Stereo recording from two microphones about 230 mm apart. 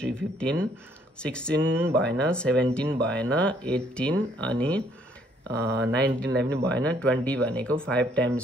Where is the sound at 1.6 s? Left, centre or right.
Centre.